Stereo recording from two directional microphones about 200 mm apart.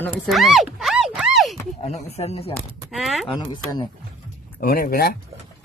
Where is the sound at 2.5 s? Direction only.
Centre (ahead or behind).